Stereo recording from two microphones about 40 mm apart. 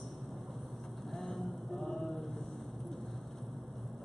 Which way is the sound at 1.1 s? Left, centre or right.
Centre.